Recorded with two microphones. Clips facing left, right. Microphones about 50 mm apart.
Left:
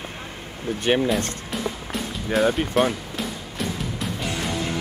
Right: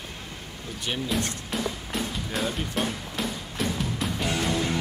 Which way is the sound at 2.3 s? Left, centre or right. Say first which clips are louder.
Left 10 dB; left.